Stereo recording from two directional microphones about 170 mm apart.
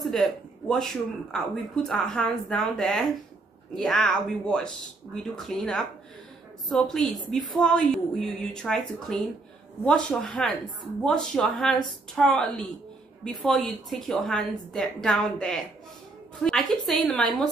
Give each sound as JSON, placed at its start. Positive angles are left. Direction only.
{"t": 0.0, "sound": "a woman's voice", "side_deg": 0}